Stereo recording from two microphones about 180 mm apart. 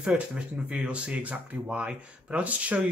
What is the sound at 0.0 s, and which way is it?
Speech, 5° right (ahead or behind).